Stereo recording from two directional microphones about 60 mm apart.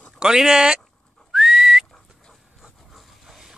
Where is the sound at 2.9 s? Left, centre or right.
Centre.